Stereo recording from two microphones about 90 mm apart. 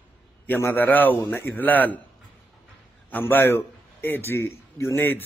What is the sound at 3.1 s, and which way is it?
A man's voice, 25° left (ahead or behind).